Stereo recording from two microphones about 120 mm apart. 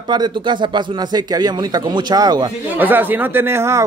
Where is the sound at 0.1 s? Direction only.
40° right (ahead or behind).